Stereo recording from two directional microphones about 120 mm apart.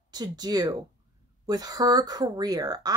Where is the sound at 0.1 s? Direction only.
35° right (ahead or behind).